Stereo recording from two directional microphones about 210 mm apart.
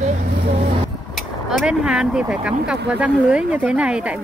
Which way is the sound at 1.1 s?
Centre (ahead or behind).